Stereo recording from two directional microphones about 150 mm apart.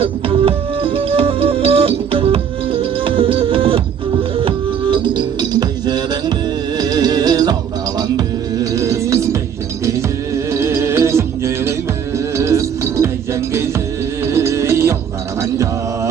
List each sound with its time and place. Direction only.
0.0 s music: 40° right (ahead or behind)
8.5 s music: 20° right (ahead or behind)